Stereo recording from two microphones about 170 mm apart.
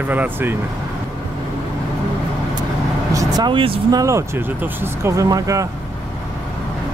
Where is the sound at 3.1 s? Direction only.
25° right (ahead or behind).